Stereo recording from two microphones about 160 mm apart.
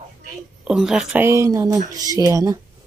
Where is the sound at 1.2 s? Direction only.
20° right (ahead or behind).